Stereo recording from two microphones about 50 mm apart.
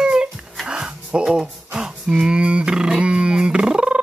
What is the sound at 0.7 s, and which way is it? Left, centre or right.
Music, centre.